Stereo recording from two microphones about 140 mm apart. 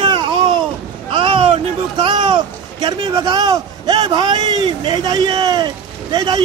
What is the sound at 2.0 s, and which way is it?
Speech, 35° right (ahead or behind).